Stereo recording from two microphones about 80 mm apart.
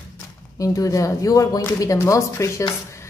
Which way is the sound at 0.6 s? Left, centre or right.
Left.